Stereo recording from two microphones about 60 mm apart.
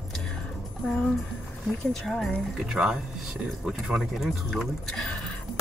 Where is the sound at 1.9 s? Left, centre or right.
Centre.